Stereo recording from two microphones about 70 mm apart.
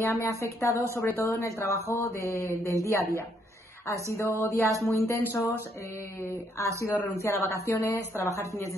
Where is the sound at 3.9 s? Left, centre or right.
Right.